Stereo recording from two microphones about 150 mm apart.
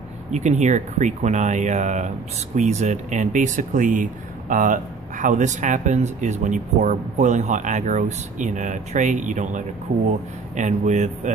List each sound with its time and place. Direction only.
0.3 s speech: 50° right (ahead or behind)